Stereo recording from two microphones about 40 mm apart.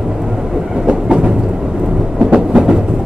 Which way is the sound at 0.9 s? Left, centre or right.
Right.